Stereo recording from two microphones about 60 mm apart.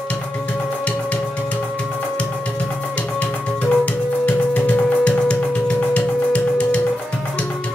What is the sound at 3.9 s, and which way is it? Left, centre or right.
Music, left.